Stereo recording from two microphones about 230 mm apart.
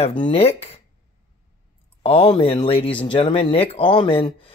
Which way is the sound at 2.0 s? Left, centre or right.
Left.